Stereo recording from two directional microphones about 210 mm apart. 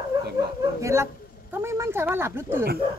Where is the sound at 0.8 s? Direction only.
15° right (ahead or behind).